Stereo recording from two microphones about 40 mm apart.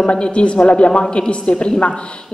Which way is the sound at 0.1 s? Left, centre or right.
Left.